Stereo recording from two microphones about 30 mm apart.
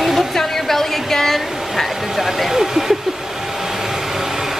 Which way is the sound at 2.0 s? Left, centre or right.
Centre.